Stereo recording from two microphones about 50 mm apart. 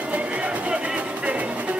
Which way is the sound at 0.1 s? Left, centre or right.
Right.